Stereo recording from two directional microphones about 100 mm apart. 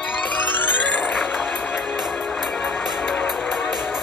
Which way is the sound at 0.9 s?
15° left (ahead or behind).